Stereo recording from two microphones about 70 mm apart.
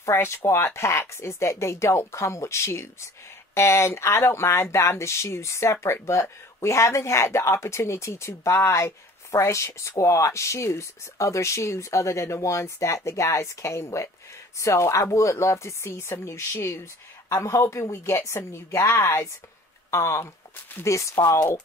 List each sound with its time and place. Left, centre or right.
0.0 s speech: left